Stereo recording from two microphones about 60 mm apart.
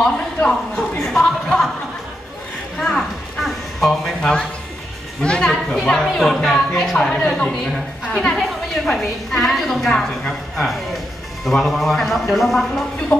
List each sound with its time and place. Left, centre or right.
0.0 s a woman's voice: centre
2.8 s a woman's voice: centre
3.3 s a sound: centre
4.2 s a woman's voice: centre